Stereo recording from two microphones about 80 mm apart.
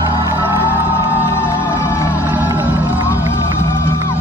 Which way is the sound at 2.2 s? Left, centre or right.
Right.